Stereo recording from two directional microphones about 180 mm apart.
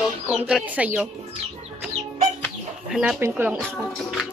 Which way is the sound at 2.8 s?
5° right (ahead or behind).